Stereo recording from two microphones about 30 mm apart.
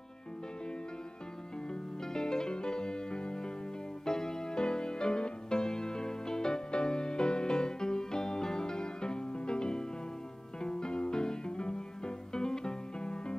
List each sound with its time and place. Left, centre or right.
2.1 s music: left
4.0 s music: left